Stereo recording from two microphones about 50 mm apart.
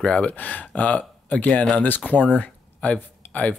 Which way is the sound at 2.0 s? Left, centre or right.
Left.